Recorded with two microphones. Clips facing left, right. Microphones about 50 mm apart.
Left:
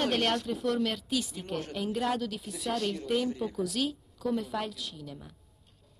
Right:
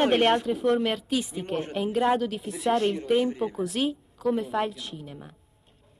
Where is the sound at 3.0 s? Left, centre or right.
Right.